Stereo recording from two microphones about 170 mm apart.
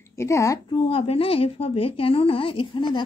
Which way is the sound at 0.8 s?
35° left (ahead or behind).